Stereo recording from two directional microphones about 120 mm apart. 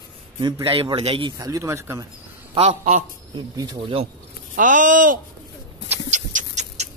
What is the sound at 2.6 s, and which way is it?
Speech, 65° right (ahead or behind).